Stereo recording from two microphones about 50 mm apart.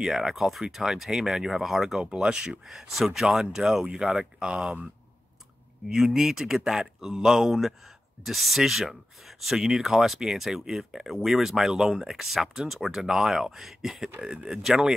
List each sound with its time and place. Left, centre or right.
0.0 s speech: centre
2.0 s speech: centre
5.9 s speech: centre